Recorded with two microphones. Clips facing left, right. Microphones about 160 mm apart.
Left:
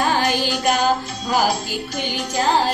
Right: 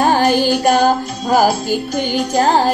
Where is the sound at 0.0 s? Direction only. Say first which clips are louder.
Right 7 dB; 50° right (ahead or behind).